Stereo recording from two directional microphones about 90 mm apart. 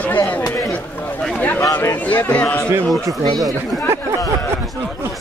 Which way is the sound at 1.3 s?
20° left (ahead or behind).